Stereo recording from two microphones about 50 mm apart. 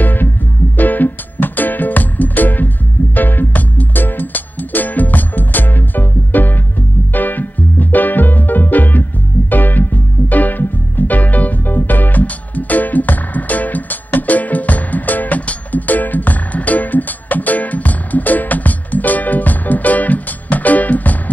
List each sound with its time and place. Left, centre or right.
0.0 s music: left